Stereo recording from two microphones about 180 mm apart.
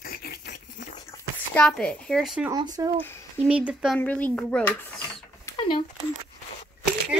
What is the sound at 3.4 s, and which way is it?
Speech, 5° right (ahead or behind).